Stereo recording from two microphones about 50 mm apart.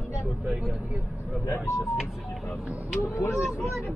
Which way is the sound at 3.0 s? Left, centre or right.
Left.